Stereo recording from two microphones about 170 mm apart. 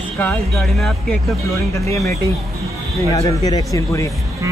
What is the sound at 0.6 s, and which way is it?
Speech, centre (ahead or behind).